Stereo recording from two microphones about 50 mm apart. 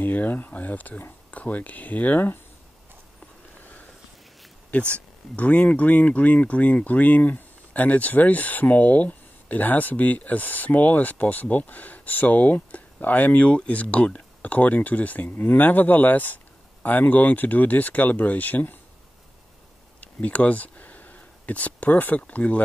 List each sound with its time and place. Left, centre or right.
0.0 s speech: left
4.7 s speech: left
20.0 s a sound: left